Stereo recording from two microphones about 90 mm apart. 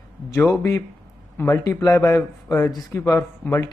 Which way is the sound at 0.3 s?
35° left (ahead or behind).